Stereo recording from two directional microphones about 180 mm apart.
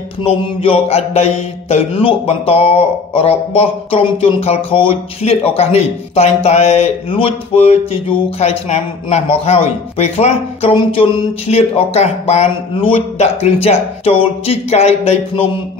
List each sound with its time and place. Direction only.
0.2 s mantra: 35° left (ahead or behind)